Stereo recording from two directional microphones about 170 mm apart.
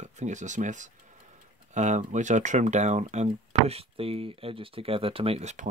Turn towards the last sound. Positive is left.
turn(degrees=-40)  # may be behind; listen again after turning